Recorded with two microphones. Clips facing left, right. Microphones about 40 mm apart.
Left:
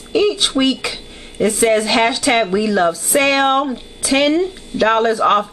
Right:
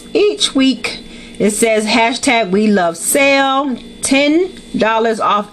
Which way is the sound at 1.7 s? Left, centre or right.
Centre.